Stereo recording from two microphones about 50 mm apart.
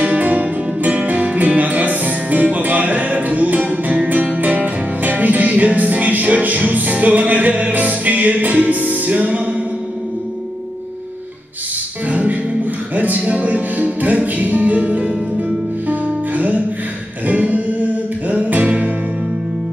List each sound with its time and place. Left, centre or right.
0.0 s music: right
12.1 s music: right